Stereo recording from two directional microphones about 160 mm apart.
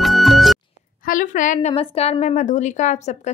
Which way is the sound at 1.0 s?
55° left (ahead or behind).